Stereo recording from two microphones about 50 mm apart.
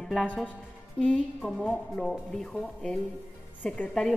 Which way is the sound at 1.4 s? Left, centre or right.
Centre.